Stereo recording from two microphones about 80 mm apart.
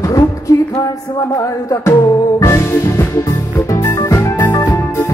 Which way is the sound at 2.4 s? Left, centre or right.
Left.